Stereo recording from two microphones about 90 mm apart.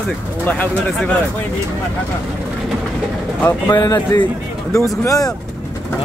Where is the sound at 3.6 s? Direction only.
40° left (ahead or behind).